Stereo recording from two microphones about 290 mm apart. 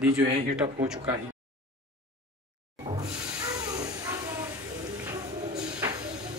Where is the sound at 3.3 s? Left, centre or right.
Centre.